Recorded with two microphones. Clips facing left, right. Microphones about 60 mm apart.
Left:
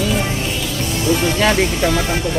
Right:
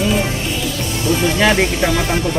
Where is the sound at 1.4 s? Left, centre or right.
Right.